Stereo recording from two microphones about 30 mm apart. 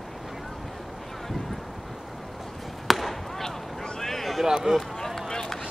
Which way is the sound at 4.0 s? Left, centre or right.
Centre.